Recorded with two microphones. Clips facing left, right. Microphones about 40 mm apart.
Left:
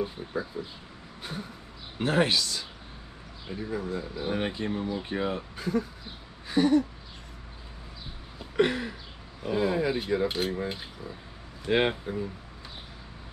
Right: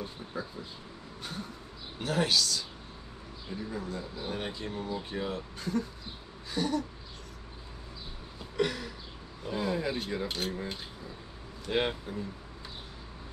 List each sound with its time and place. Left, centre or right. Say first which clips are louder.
0.0 s cutlery: left 6 dB; centre
2.0 s speech: left 4 dB; left
3.5 s cutlery: left 5 dB; centre
4.2 s speech: left 7 dB; left
5.6 s cutlery: left 3 dB; centre
6.4 s speech: left 9 dB; left
8.5 s a sound: left 6 dB; left
9.4 s cutlery: left 5 dB; centre
11.6 s speech: left 5 dB; left